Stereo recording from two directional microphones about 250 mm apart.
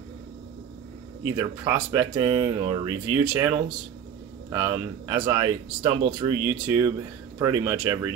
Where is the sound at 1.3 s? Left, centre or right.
Centre.